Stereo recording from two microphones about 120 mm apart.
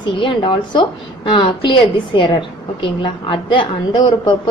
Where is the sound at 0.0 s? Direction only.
45° left (ahead or behind).